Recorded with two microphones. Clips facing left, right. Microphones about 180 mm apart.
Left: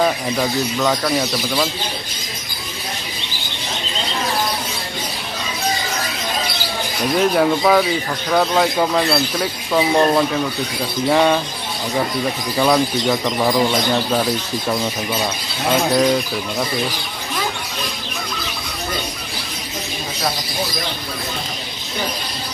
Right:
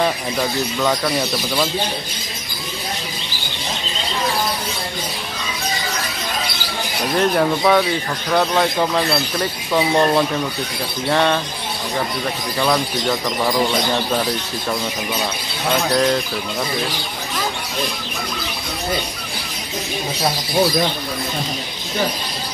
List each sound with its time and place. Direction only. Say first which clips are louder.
0.0 s speech: left 2 dB; centre (ahead or behind)
7.2 s speech: left 1 dB; 5° left (ahead or behind)
12.5 s speech: left 3 dB; 5° left (ahead or behind)
15.7 s speech: left 2 dB; 5° left (ahead or behind)